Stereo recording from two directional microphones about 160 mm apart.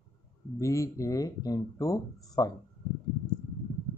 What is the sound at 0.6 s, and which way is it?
Speech, 20° left (ahead or behind).